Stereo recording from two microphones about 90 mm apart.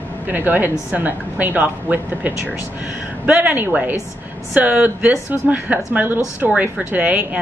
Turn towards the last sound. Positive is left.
turn(degrees=-15)  # may be behind; listen again after turning